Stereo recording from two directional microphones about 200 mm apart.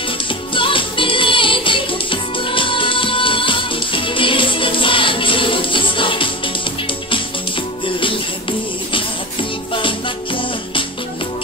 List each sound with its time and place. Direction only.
0.3 s music: 25° left (ahead or behind)